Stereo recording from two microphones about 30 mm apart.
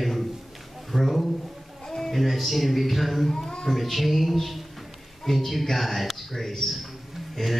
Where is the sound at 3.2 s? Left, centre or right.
Centre.